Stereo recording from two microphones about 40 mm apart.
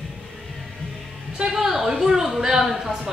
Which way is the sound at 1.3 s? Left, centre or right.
Centre.